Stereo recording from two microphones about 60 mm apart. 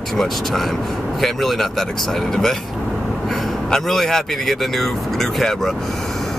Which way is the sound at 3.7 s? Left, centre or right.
Centre.